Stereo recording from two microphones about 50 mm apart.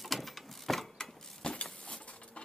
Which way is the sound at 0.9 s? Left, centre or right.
Centre.